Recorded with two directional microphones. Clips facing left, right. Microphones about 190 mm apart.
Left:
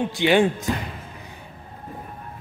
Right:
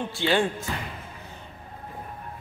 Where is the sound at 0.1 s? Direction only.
15° left (ahead or behind).